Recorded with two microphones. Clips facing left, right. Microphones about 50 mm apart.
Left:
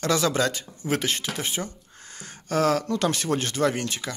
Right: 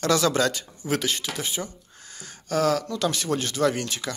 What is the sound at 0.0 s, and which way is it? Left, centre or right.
Speech, centre.